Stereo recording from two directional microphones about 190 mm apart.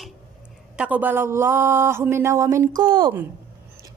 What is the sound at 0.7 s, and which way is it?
Speech, 5° right (ahead or behind).